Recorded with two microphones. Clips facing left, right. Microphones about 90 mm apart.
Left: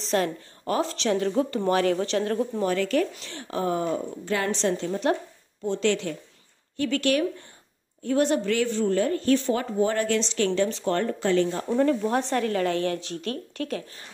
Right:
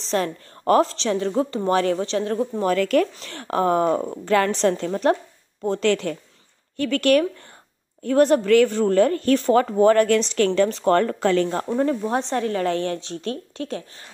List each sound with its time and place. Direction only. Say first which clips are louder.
0.0 s a sound: right 1 dB; 30° right (ahead or behind)
0.9 s a woman's voice: right 2 dB; 30° right (ahead or behind)
2.0 s a woman's voice: right 2 dB; 25° right (ahead or behind)
2.6 s speech: right 6 dB; 55° right (ahead or behind)
4.2 s speech: right 7 dB; 60° right (ahead or behind)
10.7 s speech: right 7 dB; 45° right (ahead or behind)
11.0 s speech: right 4 dB; 70° right (ahead or behind)
11.6 s a woman's voice: even; 25° right (ahead or behind)